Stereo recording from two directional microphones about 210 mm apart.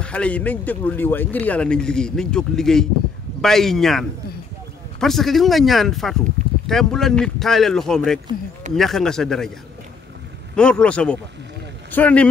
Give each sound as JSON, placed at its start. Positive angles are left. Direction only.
{"t": 0.0, "sound": "speech", "side_deg": 5}
{"t": 5.0, "sound": "speech", "side_deg": 0}
{"t": 6.4, "sound": "a sound", "side_deg": -35}
{"t": 6.7, "sound": "speech", "side_deg": 0}
{"t": 10.5, "sound": "speech", "side_deg": 5}